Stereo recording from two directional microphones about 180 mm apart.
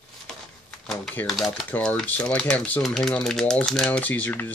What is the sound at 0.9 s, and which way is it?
Speech, centre (ahead or behind).